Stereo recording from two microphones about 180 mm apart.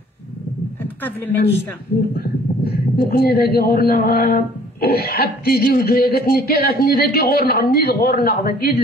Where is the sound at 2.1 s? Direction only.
60° left (ahead or behind).